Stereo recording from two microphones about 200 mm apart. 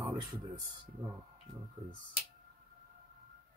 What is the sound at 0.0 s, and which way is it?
Speech, 20° right (ahead or behind).